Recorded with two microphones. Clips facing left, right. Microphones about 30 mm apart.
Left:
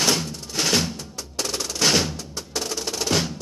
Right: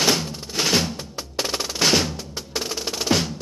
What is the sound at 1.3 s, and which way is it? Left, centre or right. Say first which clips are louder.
Percussion: right 2 dB; right.